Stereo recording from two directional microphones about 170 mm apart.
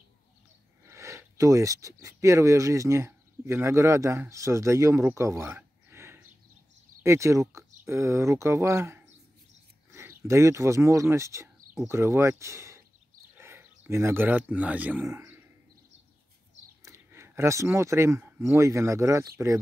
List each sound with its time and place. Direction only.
0.8 s speech: 15° right (ahead or behind)
16.8 s speech: 15° right (ahead or behind)